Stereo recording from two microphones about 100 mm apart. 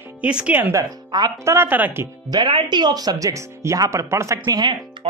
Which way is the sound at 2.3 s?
45° right (ahead or behind).